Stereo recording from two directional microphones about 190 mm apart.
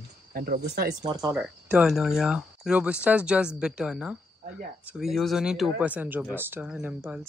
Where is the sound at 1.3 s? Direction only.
5° right (ahead or behind).